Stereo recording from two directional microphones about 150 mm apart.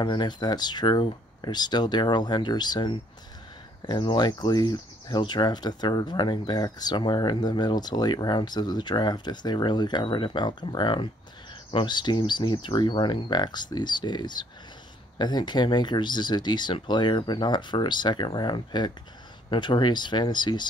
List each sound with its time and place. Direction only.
0.0 s speech: 30° left (ahead or behind)